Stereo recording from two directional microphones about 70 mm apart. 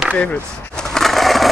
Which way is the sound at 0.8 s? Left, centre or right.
Centre.